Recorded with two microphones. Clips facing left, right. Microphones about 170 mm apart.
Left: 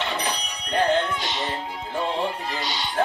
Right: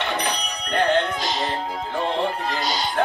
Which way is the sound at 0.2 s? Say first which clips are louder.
Right 3 dB; 60° right (ahead or behind).